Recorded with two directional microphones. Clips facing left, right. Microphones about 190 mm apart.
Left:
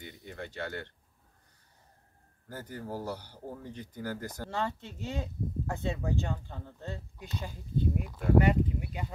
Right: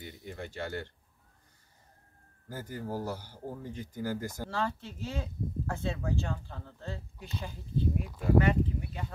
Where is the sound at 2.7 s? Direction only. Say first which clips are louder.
Right 1 dB; 10° right (ahead or behind).